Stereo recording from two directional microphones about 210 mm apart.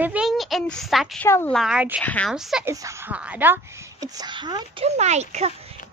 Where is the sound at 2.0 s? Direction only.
5° left (ahead or behind).